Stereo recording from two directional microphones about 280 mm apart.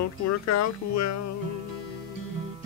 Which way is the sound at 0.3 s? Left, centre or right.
Left.